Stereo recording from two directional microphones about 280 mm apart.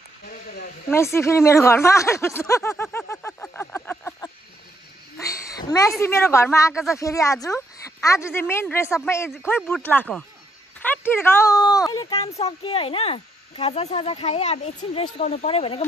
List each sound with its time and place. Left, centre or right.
0.8 s speech: centre
5.6 s speech: centre
6.7 s speech: centre
7.0 s speech: centre